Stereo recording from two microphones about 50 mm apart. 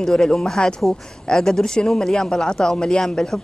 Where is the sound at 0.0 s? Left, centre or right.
Centre.